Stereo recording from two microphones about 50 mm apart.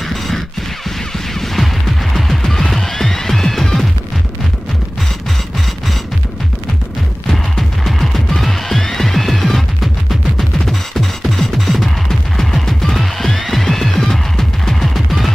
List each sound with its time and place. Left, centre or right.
1.4 s a sound: centre
2.1 s music: centre
7.8 s music: centre
10.7 s music: centre